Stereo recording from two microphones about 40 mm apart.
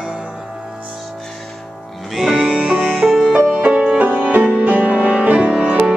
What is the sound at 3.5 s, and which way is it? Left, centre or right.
Music, right.